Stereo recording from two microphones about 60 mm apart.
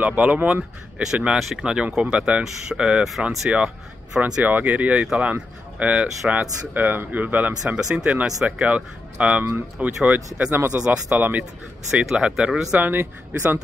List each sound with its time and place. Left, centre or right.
0.0 s speech: right; by 3.3 s centre
3.4 s speech: centre
4.4 s speech: right
7.6 s speech: centre
10.5 s speech: right
10.8 s speech: centre
11.1 s speech: right
11.9 s speech: centre
12.7 s speech: right